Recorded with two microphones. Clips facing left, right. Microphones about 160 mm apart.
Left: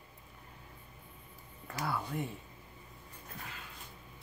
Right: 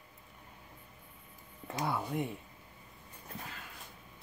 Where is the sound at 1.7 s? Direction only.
20° right (ahead or behind).